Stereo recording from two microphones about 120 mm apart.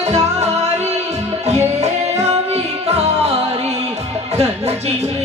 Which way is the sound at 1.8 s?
65° right (ahead or behind).